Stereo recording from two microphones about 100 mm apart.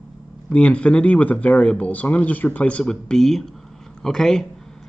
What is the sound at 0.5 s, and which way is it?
A man's voice, 10° left (ahead or behind).